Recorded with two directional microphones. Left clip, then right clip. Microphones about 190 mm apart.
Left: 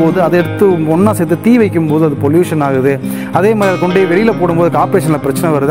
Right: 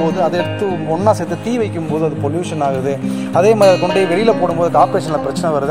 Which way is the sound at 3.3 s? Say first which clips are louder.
Right 1 dB; 50° left (ahead or behind).